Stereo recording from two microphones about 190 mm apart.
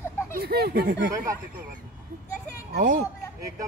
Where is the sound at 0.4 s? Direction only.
55° right (ahead or behind).